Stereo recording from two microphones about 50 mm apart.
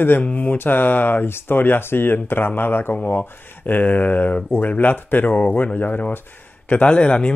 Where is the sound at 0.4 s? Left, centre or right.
Left.